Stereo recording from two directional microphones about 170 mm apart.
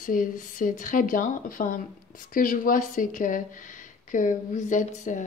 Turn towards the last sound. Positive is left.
turn(degrees=45)  # may be behind; listen again after turning